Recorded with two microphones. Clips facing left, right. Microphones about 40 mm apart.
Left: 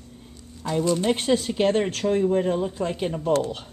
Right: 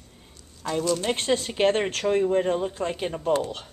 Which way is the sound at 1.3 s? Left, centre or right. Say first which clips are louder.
Right 1 dB; centre.